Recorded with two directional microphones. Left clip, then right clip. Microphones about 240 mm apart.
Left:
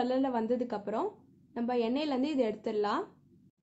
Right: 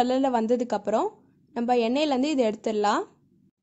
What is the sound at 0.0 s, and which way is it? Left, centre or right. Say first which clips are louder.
A woman's voice: right 7 dB; right.